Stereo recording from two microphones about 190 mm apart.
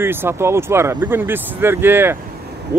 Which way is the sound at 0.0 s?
10° right (ahead or behind).